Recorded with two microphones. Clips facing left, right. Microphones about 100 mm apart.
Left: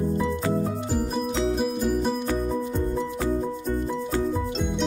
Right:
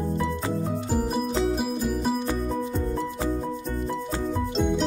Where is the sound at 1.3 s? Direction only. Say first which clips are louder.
Left 2 dB; centre (ahead or behind).